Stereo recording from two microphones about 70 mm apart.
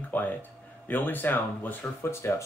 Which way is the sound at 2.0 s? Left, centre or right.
Left.